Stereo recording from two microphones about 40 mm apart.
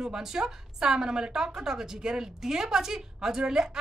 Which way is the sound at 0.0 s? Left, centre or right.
Centre.